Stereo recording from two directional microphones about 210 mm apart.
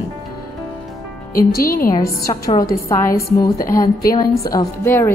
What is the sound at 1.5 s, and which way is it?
Speech, 45° left (ahead or behind).